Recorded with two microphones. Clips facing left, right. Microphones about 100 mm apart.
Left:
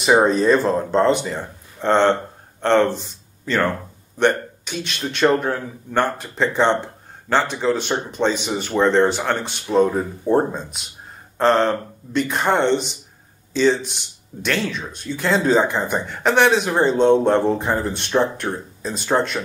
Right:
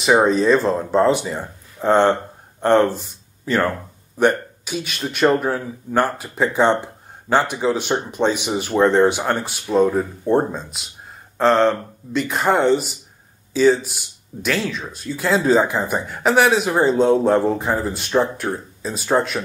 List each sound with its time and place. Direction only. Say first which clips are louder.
0.0 s speech: even; centre (ahead or behind)